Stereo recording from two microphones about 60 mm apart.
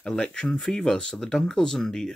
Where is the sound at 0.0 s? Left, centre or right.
Centre.